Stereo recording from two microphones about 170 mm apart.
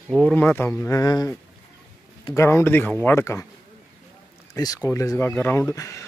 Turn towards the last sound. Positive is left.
turn(degrees=15)  # may be behind; listen again after turning